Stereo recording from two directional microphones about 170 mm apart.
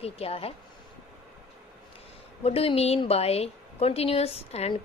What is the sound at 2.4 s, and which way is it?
A woman's voice, 35° left (ahead or behind).